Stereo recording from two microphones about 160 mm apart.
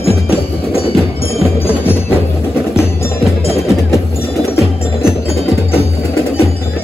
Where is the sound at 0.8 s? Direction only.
35° left (ahead or behind).